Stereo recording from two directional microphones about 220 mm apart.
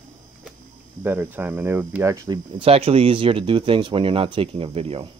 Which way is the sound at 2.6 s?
25° right (ahead or behind).